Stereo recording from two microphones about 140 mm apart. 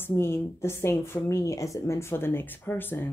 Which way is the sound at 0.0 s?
20° left (ahead or behind).